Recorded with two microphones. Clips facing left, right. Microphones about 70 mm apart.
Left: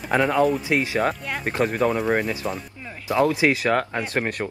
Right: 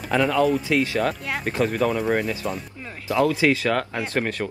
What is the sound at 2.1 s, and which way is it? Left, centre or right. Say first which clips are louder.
Speech: even; centre.